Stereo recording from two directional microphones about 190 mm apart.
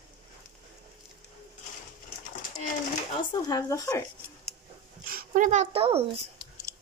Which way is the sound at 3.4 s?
20° left (ahead or behind).